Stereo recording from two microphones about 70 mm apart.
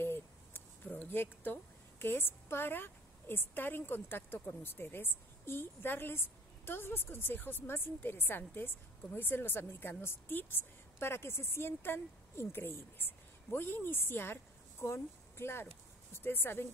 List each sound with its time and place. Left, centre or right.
0.0 s a woman's voice: left